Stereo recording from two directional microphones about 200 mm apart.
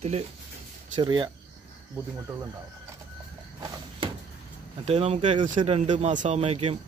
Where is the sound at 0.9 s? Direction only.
20° right (ahead or behind).